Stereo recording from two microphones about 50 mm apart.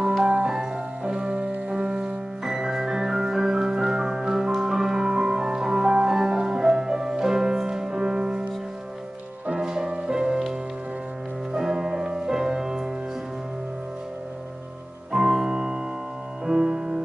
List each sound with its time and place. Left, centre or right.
0.3 s music: centre
9.6 s music: centre
11.5 s music: centre
15.1 s music: centre